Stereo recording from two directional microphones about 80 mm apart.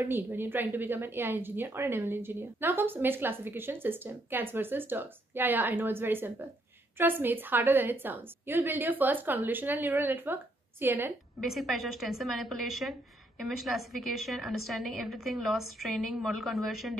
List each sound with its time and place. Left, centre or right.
0.0 s a woman's voice: right
11.5 s a woman's voice: centre